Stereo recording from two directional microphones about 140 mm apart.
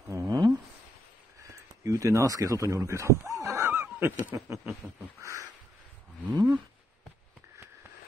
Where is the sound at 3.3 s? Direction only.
20° right (ahead or behind).